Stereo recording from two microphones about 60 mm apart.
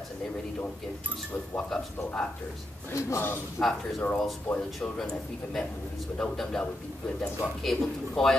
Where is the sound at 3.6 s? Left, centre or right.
Centre.